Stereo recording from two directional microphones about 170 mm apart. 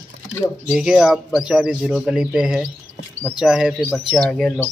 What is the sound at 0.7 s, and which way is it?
Speech, 5° right (ahead or behind).